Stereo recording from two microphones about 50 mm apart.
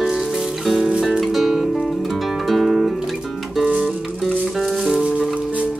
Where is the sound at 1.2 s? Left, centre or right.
Centre.